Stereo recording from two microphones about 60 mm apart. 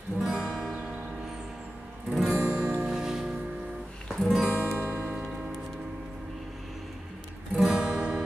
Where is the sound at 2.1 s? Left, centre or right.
Centre.